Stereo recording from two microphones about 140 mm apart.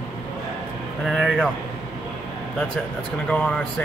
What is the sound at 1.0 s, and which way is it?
Speech, centre (ahead or behind).